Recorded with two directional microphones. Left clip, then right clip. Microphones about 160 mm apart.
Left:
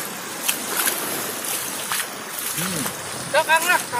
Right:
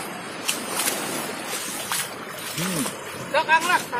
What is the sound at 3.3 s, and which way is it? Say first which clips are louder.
Vehicle: left 1 dB; 70° left (ahead or behind).